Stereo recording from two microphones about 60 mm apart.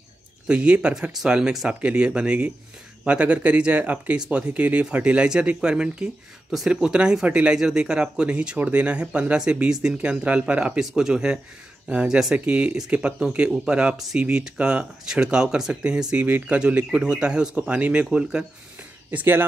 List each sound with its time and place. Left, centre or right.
0.5 s speech: centre
1.7 s speech: centre
10.8 s speech: centre
13.9 s speech: centre
14.2 s speech: centre
19.0 s speech: right